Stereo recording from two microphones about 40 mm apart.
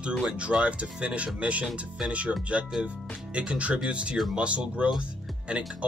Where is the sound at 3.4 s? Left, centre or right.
Right.